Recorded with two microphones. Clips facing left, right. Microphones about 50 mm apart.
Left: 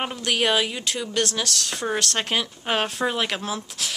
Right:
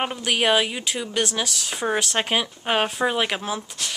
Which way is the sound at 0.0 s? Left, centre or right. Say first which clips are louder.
Right 1 dB; centre.